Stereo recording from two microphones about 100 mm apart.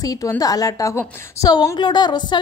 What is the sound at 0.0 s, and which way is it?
A woman's voice, 35° left (ahead or behind).